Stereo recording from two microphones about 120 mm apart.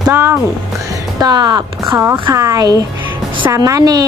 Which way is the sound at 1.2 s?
35° right (ahead or behind).